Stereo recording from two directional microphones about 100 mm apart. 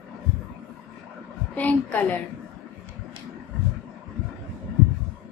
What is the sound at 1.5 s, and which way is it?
Speech, 15° left (ahead or behind).